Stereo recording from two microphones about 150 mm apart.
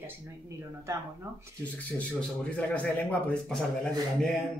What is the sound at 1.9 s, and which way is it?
A man's voice, 10° left (ahead or behind).